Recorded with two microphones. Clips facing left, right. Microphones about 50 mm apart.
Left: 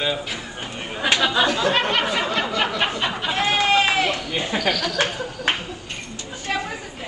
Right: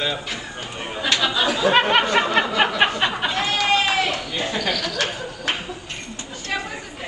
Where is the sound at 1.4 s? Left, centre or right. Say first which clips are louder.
Even; centre.